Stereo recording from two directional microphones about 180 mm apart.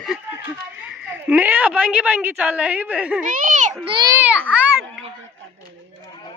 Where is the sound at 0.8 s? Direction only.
10° right (ahead or behind).